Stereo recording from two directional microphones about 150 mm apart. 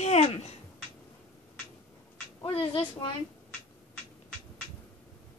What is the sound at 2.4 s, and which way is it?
Speech, 40° left (ahead or behind).